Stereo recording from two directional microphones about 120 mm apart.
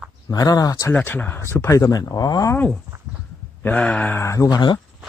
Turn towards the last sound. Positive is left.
turn(degrees=35)  # may be behind; listen again after turning